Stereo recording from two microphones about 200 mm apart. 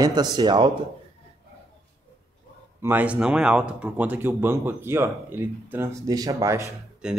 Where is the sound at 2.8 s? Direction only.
10° right (ahead or behind).